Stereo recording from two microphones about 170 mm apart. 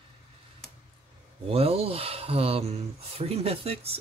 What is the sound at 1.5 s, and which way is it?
Speech, 35° right (ahead or behind).